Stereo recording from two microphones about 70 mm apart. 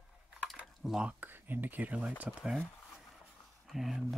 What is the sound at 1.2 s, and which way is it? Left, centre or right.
Speech, right.